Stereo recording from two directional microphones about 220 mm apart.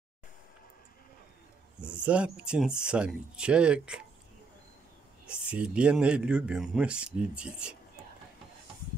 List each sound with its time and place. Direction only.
1.8 s speech: 5° right (ahead or behind)
5.2 s speech: 5° right (ahead or behind)